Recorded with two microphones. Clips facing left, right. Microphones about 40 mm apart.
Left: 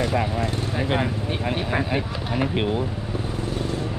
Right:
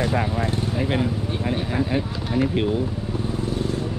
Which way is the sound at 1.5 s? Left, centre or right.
Left.